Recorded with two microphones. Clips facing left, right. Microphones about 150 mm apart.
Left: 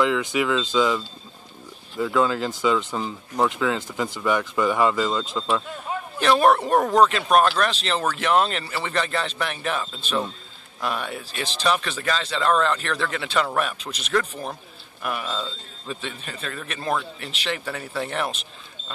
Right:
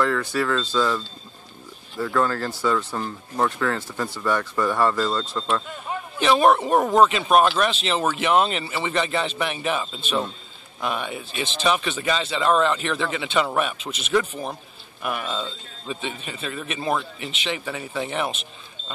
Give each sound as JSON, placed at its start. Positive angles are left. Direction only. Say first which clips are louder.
{"t": 0.2, "sound": "speech", "louder": "left 1 dB", "side_deg": 15}
{"t": 3.0, "sound": "speech", "louder": "left 1 dB", "side_deg": 5}
{"t": 6.1, "sound": "speech", "louder": "even", "side_deg": 0}